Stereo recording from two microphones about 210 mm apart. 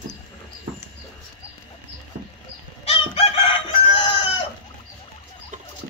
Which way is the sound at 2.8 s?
25° left (ahead or behind).